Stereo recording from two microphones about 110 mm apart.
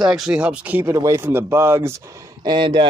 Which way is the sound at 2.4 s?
45° right (ahead or behind).